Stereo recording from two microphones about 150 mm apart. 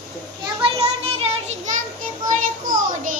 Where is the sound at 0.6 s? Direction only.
40° right (ahead or behind).